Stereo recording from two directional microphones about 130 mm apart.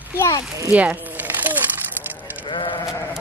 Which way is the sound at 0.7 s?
10° right (ahead or behind).